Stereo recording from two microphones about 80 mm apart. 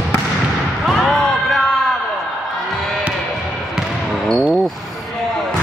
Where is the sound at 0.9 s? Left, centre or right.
Centre.